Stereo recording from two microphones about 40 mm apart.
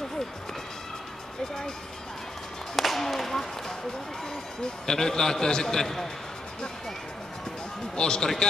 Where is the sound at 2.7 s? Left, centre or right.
Centre.